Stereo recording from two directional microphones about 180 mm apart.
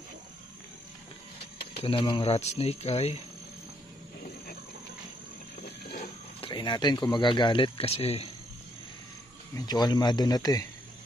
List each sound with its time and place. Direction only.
1.8 s speech: 30° left (ahead or behind)
6.4 s speech: 25° left (ahead or behind)
9.7 s speech: 25° left (ahead or behind)